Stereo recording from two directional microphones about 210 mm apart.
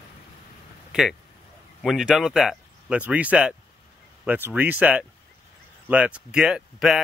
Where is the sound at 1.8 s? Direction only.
Centre (ahead or behind).